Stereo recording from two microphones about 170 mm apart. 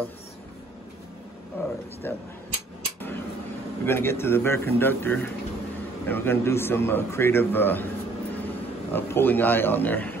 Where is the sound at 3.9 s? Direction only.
15° left (ahead or behind).